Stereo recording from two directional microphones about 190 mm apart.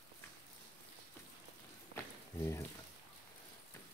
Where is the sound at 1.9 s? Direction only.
15° left (ahead or behind).